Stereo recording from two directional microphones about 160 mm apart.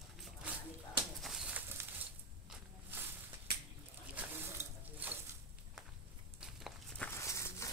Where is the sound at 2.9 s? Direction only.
15° right (ahead or behind).